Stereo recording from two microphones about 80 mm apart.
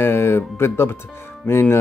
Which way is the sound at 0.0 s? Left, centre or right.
Left.